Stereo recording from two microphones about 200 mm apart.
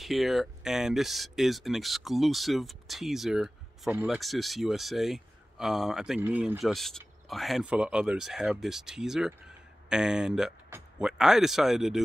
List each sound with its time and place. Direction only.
0.0 s speech: centre (ahead or behind)